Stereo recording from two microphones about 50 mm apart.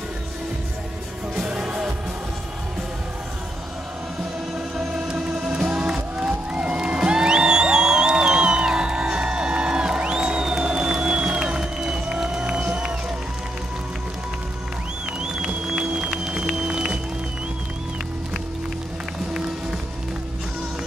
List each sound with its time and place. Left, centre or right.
1.3 s music: centre
4.9 s music: centre
15.1 s music: centre